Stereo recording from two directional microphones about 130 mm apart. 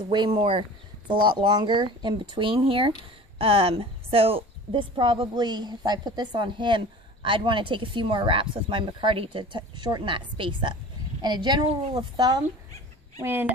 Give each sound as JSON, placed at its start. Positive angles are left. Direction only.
{"t": 0.3, "sound": "a woman's voice", "side_deg": -45}
{"t": 13.2, "sound": "speech", "side_deg": -15}